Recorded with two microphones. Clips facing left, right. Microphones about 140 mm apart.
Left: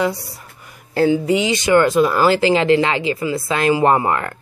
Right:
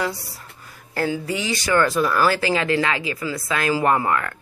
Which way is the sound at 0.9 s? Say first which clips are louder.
Left 9 dB; 20° left (ahead or behind).